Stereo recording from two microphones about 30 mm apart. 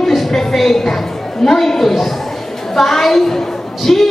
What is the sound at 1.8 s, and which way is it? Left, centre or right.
A woman's voice, centre.